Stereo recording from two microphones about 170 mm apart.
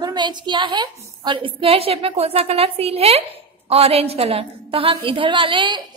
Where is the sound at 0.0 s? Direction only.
25° right (ahead or behind).